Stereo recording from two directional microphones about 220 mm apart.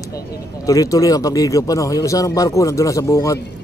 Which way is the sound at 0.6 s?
15° left (ahead or behind).